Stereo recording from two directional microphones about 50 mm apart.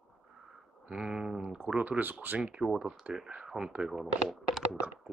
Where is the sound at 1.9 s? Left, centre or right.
Right.